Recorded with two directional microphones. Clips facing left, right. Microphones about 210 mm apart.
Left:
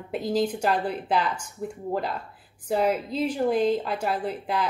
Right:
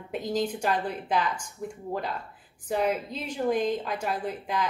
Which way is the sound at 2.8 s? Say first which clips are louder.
Left 4 dB; 10° left (ahead or behind).